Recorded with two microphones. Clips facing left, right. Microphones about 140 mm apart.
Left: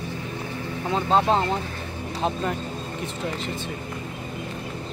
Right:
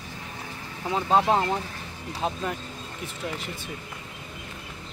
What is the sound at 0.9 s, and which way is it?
Speech, 10° right (ahead or behind).